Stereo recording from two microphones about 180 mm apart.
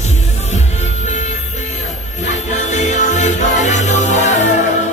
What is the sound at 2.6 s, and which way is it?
Music, 40° left (ahead or behind).